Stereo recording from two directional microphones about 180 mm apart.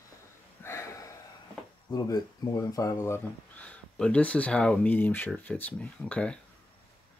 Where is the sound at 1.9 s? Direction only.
20° left (ahead or behind).